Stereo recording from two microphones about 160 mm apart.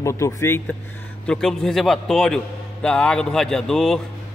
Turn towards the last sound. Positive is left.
turn(degrees=5)  # may be behind; listen again after turning